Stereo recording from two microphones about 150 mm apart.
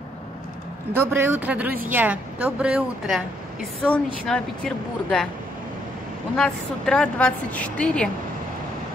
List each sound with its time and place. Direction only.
0.9 s speech: 15° right (ahead or behind)
3.8 s a woman's voice: 5° left (ahead or behind)
6.3 s a woman's voice: 5° left (ahead or behind)